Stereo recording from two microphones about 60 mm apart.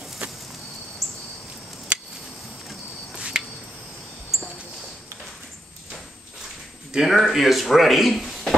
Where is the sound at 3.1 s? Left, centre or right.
Centre.